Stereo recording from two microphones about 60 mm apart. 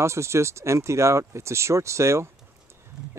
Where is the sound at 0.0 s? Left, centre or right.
Right.